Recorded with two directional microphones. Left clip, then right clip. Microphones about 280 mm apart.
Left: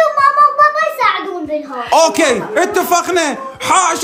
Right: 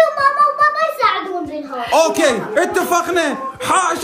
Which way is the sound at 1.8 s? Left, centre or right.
Centre.